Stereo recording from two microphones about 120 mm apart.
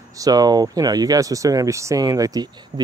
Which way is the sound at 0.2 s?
35° right (ahead or behind).